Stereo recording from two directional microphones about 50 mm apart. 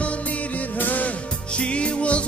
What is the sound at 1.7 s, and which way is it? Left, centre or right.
Music, left.